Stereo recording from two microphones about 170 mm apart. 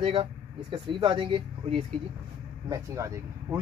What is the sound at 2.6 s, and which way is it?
Speech, 20° right (ahead or behind).